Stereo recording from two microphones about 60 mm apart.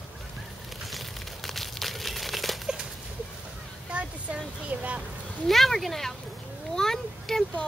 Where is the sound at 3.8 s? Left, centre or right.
Right.